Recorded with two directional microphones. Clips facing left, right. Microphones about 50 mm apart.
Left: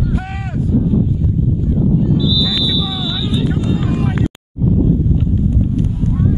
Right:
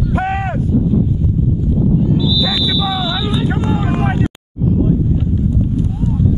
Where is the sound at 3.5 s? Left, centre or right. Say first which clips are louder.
Right 1 dB; right.